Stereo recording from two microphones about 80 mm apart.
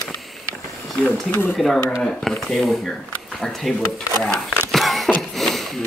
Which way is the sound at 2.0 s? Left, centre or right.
Centre.